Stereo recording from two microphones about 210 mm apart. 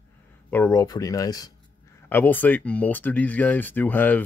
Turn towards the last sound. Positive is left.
turn(degrees=10)  # may be behind; listen again after turning